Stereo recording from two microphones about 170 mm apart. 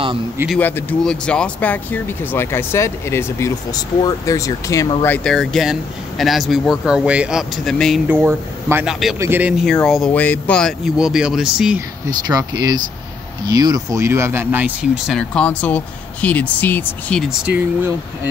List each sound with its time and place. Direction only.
0.6 s speech: 10° left (ahead or behind)
5.0 s speech: 5° left (ahead or behind)
8.1 s speech: 10° right (ahead or behind)
12.1 s speech: 25° right (ahead or behind); by 17.2 s 10° left (ahead or behind)
17.3 s speech: 10° right (ahead or behind)